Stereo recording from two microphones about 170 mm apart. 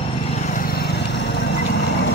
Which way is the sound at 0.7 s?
70° left (ahead or behind).